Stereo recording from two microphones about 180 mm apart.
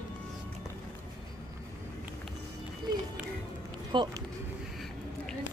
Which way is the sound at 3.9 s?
25° right (ahead or behind).